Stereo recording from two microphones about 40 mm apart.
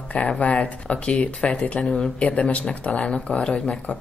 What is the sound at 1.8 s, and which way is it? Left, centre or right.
Speech, left.